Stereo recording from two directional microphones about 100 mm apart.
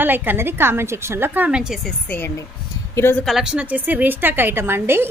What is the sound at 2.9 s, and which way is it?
Speech, 25° left (ahead or behind).